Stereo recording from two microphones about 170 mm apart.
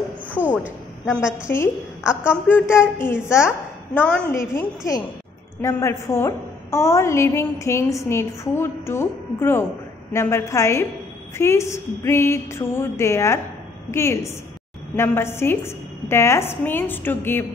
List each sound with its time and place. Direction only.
0.3 s a sound: 10° right (ahead or behind)
1.0 s a woman's voice: centre (ahead or behind)
1.5 s a woman's voice: 15° left (ahead or behind)
4.4 s a woman's voice: 20° left (ahead or behind)